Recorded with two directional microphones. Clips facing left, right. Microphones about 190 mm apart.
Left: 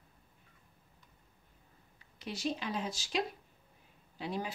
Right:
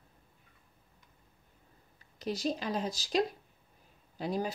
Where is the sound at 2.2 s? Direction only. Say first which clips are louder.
Right 4 dB; 40° right (ahead or behind).